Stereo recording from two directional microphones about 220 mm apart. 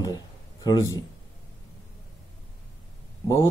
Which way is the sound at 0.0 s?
20° left (ahead or behind).